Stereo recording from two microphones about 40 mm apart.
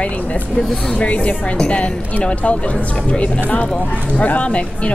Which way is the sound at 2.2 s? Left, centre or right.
Left.